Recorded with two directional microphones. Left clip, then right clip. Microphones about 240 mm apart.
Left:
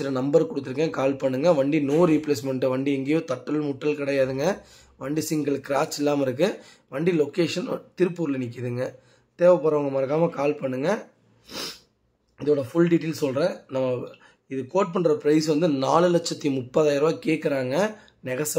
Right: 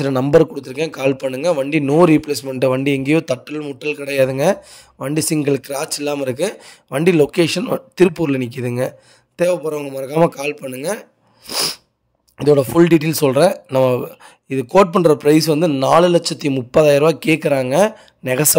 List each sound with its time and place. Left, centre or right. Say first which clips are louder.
0.0 s a man's voice: right 8 dB; right
11.4 s sneeze: right 13 dB; right
12.4 s a man's voice: right 9 dB; right